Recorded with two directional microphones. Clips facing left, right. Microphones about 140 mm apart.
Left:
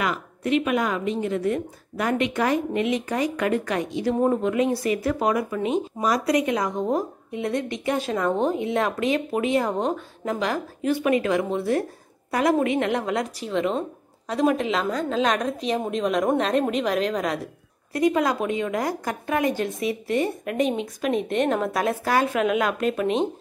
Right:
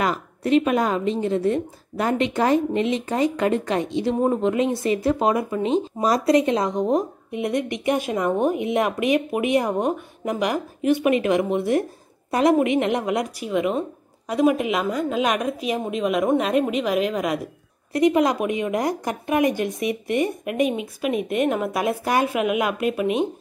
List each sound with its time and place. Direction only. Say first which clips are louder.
0.0 s a woman's voice: right 3 dB; 35° right (ahead or behind); by 17.4 s 10° right (ahead or behind)
17.9 s a woman's voice: right 3 dB; 20° right (ahead or behind)